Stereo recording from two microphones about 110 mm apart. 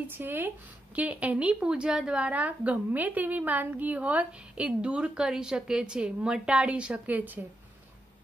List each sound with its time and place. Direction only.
0.0 s a woman's voice: 20° right (ahead or behind)